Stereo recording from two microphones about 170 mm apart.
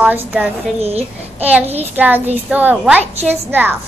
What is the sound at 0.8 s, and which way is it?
Speech, 40° right (ahead or behind).